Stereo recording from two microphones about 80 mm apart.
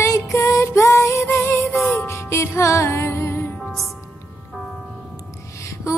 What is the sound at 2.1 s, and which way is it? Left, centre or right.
Music, left.